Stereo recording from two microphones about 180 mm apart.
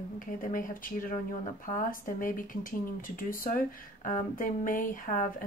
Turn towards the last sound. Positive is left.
turn(degrees=50)  # may be behind; listen again after turning